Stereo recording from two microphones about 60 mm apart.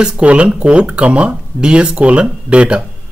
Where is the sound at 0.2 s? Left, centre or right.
Right.